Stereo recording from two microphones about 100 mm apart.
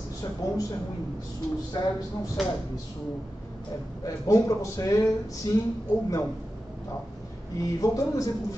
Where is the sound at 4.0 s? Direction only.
35° left (ahead or behind).